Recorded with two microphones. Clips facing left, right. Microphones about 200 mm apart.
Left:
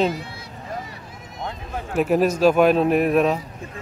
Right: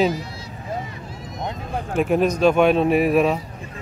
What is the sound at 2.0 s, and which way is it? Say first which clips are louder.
Speech: even; 5° left (ahead or behind).